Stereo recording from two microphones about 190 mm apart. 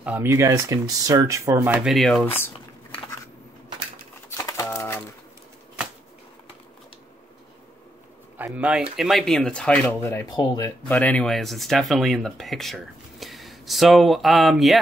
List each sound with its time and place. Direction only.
0.0 s speech: 10° right (ahead or behind)
4.3 s typewriter: 15° left (ahead or behind)
8.4 s speech: 5° right (ahead or behind); by 10.2 s 10° left (ahead or behind)
10.2 s speech: 25° left (ahead or behind)
10.9 s speech: 5° left (ahead or behind)